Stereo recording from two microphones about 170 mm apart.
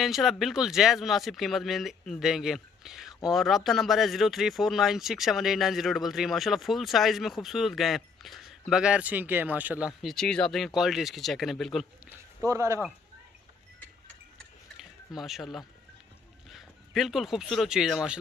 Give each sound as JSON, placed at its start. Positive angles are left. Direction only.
{"t": 0.0, "sound": "speech", "side_deg": 0}
{"t": 12.1, "sound": "speech", "side_deg": -15}
{"t": 15.1, "sound": "speech", "side_deg": 0}